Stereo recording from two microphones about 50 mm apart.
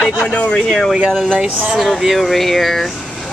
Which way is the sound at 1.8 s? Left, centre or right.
Centre.